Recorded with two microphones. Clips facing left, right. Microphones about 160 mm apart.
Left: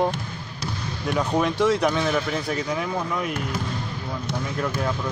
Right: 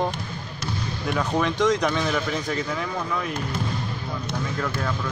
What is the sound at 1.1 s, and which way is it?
Speech, 10° left (ahead or behind).